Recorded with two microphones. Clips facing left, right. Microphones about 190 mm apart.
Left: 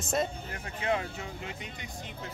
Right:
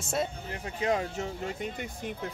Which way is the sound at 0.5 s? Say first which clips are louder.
Right 3 dB; 35° right (ahead or behind).